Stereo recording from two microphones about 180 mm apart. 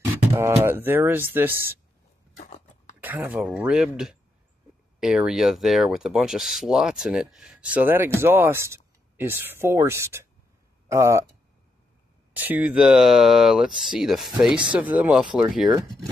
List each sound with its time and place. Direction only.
0.3 s speech: 15° right (ahead or behind)
2.3 s a sound: 40° left (ahead or behind)
3.0 s speech: 10° right (ahead or behind)
12.4 s speech: 10° right (ahead or behind)